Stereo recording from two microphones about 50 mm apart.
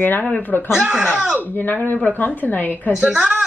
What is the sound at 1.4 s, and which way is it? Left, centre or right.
Speech, left.